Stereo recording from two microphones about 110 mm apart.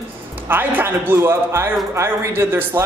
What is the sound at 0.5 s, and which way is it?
A man's voice, 20° right (ahead or behind).